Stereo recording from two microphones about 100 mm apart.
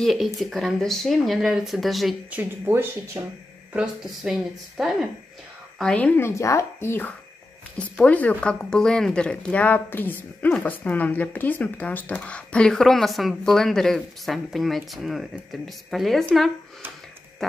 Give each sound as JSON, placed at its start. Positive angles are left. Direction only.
{"t": 0.0, "sound": "speech", "side_deg": 0}
{"t": 2.7, "sound": "speech", "side_deg": -25}
{"t": 3.2, "sound": "speech", "side_deg": -40}
{"t": 3.7, "sound": "speech", "side_deg": -5}
{"t": 5.8, "sound": "speech", "side_deg": 10}
{"t": 6.2, "sound": "speech", "side_deg": 30}